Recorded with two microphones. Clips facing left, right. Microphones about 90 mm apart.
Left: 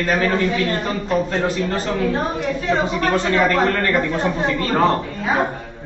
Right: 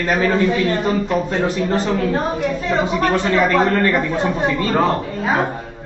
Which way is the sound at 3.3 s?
15° right (ahead or behind).